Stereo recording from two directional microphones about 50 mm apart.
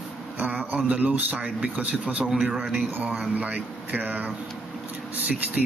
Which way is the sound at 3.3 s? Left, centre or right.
Right.